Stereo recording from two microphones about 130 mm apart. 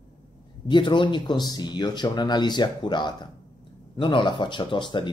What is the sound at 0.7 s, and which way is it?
Speech, 35° left (ahead or behind).